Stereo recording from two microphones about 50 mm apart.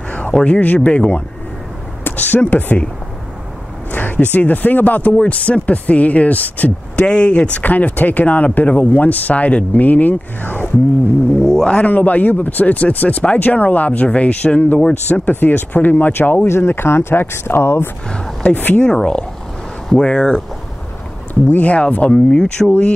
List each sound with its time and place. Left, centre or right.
0.3 s speech: centre
0.8 s speech: left
3.9 s speech: left
7.1 s speech: centre
7.6 s speech: left
11.6 s speech: left
11.9 s speech: left
16.4 s speech: left
18.1 s speech: centre
18.5 s speech: left
18.8 s speech: centre
21.5 s speech: left